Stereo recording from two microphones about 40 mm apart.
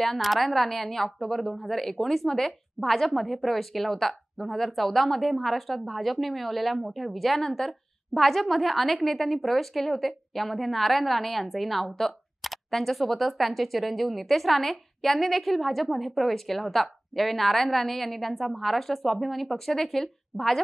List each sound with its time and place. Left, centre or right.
0.0 s a woman's voice: centre